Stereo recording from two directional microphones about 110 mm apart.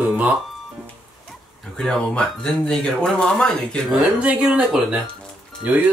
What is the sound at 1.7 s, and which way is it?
Speech, 5° left (ahead or behind).